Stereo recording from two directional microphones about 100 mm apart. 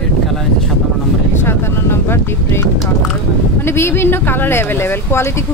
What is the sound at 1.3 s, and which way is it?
Speech, 25° left (ahead or behind).